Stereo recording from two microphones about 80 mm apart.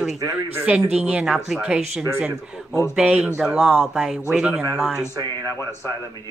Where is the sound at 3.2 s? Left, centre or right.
Centre.